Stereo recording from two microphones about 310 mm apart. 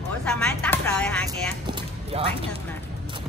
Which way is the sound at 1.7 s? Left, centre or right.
Centre.